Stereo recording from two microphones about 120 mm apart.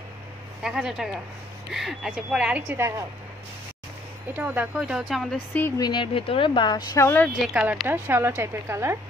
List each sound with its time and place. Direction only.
0.6 s a woman's voice: 5° right (ahead or behind); by 3.1 s 20° right (ahead or behind)
4.4 s a woman's voice: 15° right (ahead or behind)
5.8 s speech: 40° left (ahead or behind)
7.0 s speech: 20° left (ahead or behind)
7.4 s a woman's voice: 5° right (ahead or behind)
7.9 s a woman's voice: 20° right (ahead or behind)